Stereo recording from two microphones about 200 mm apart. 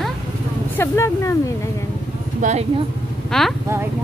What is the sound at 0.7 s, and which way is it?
Speech, 15° left (ahead or behind).